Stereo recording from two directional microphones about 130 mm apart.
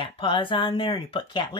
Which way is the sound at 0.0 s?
40° left (ahead or behind).